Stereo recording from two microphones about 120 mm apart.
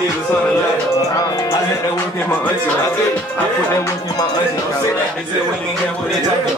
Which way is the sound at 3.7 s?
25° left (ahead or behind).